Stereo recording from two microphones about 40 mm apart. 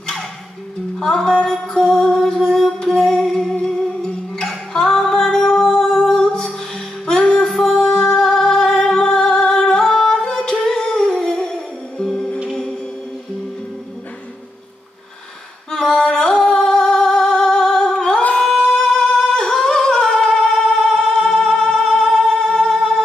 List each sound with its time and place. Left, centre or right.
0.9 s music: centre
15.7 s singing: centre
18.8 s music: left
19.1 s humming: centre
21.1 s music: centre